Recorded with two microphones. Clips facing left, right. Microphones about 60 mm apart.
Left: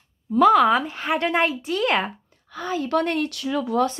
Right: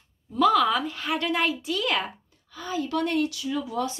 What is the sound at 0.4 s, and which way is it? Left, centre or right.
A woman's voice, left.